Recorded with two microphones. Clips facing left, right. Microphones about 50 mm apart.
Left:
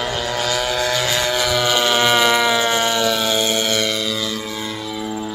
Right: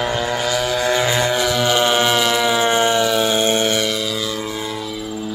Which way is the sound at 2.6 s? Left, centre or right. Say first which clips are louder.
Right 2 dB; right.